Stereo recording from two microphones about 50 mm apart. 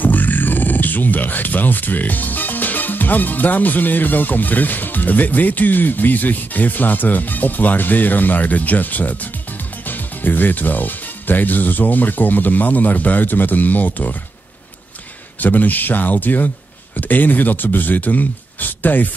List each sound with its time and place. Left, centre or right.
0.0 s speech: left
15.4 s speech: left